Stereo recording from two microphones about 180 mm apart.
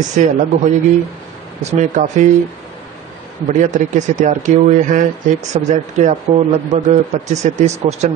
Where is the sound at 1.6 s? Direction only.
40° right (ahead or behind).